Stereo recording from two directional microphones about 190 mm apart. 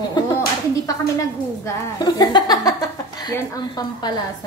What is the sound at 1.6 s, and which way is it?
Speech, 20° left (ahead or behind).